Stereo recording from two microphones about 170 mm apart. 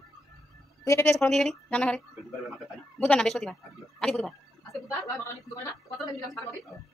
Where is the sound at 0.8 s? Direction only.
15° left (ahead or behind).